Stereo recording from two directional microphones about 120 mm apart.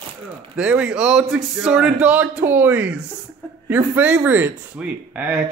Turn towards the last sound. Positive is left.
turn(degrees=-10)  # may be behind; listen again after turning